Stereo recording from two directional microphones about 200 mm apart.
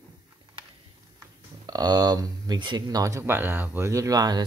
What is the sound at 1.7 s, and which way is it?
Speech, 20° right (ahead or behind).